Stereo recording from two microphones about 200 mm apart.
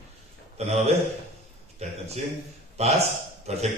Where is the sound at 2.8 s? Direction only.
30° right (ahead or behind).